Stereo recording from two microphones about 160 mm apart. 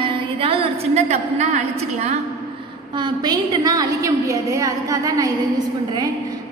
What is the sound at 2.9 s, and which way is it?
A woman's voice, 25° right (ahead or behind).